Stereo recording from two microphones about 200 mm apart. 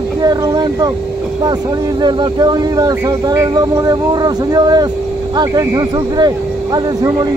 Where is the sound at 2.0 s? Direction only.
20° right (ahead or behind).